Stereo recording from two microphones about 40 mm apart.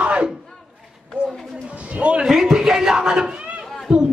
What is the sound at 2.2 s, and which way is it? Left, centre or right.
A man's voice, centre.